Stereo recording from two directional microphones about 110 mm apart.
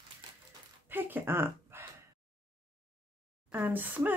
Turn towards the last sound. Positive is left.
turn(degrees=-15)  # may be behind; listen again after turning